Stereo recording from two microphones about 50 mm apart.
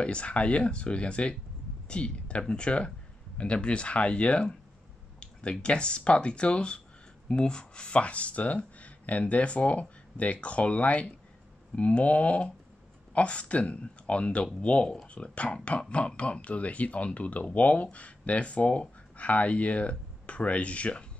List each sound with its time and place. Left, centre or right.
0.0 s speech: left